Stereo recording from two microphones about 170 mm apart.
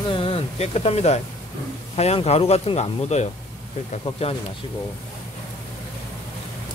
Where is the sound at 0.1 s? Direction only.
35° left (ahead or behind).